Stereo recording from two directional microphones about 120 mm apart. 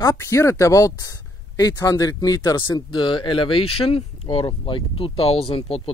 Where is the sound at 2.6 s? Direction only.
40° left (ahead or behind).